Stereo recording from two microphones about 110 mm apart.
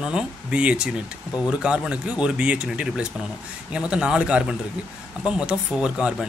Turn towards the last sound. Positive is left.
turn(degrees=-10)  # may be behind; listen again after turning